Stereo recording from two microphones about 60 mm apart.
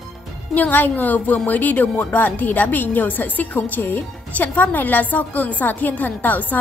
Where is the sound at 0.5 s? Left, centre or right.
Left.